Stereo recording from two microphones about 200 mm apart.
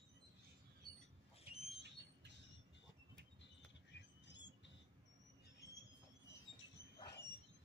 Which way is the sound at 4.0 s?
60° left (ahead or behind).